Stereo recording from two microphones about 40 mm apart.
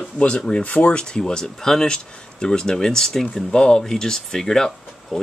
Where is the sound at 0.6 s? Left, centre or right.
Left.